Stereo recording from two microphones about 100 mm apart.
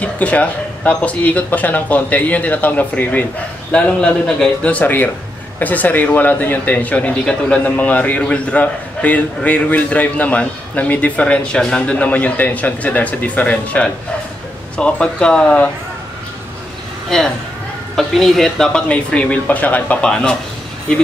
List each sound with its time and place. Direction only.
0.0 s a man's voice: 15° left (ahead or behind)
17.9 s a man's voice: centre (ahead or behind)